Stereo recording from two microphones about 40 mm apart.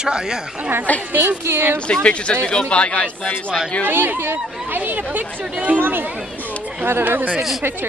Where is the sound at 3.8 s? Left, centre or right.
Right.